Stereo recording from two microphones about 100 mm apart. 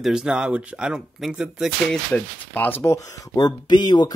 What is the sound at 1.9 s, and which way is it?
Speech, 15° left (ahead or behind).